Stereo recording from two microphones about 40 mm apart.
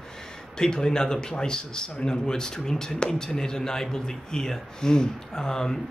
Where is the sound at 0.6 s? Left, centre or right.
Centre.